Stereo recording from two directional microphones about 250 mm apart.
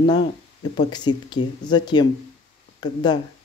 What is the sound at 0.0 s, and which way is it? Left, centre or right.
Speech, left.